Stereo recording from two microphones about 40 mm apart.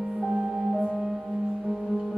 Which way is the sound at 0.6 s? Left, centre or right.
Centre.